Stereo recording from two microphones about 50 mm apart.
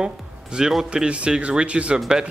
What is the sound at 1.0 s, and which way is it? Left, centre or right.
Speech, right.